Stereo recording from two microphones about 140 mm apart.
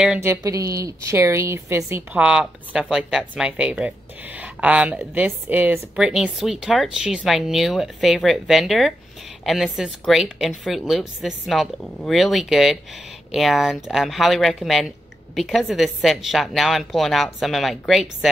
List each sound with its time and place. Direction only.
0.2 s a woman's voice: 20° right (ahead or behind)
2.2 s speech: 5° right (ahead or behind)